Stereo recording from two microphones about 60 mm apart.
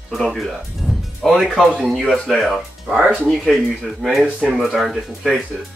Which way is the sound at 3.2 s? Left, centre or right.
Centre.